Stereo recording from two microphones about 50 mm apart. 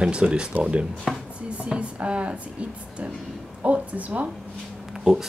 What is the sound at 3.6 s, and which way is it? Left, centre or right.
Speech, right.